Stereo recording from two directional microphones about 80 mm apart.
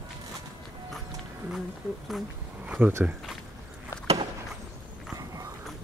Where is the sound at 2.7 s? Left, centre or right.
Right.